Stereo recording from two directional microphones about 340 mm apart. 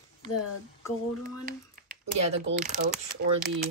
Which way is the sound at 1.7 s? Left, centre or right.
Right.